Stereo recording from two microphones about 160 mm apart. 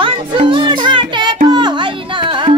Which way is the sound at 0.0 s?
35° right (ahead or behind).